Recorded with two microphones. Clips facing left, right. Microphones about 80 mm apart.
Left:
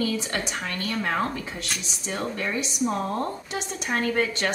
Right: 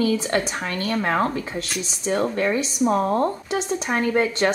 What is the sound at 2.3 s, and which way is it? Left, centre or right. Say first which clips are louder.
Speech: right 7 dB; right.